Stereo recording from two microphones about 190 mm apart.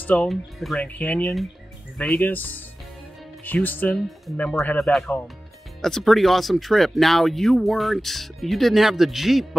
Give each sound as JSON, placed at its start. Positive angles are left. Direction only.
{"t": 0.0, "sound": "speech", "side_deg": 5}